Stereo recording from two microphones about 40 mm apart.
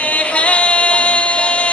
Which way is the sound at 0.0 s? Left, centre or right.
Left.